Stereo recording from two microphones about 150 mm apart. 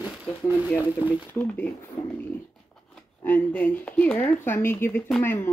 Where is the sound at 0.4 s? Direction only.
15° left (ahead or behind).